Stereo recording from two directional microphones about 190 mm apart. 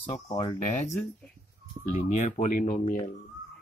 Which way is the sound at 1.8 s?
40° left (ahead or behind).